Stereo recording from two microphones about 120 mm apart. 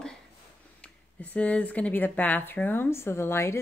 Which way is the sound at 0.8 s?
10° left (ahead or behind).